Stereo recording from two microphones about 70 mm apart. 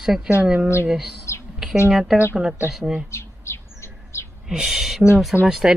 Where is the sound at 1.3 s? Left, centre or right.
Left.